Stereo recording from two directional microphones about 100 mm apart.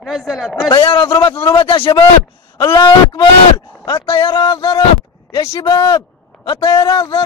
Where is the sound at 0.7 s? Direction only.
55° left (ahead or behind).